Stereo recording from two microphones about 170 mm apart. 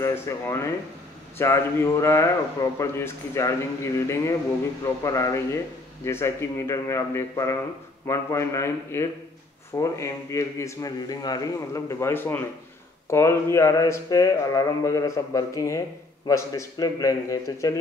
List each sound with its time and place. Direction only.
0.0 s speech: 15° left (ahead or behind)